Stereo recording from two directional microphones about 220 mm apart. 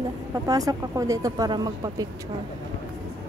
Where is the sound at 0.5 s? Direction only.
15° right (ahead or behind).